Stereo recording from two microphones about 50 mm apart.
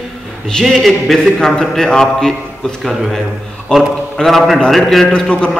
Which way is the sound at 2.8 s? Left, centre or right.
Centre.